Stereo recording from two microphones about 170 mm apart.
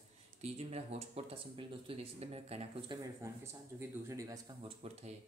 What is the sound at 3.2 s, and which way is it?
Speech, 15° right (ahead or behind).